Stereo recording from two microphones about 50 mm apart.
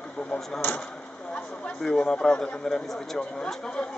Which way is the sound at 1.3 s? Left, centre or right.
Centre.